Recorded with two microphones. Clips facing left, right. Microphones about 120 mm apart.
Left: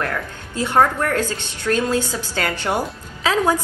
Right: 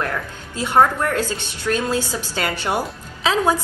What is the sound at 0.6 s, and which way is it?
A woman's voice, 15° right (ahead or behind).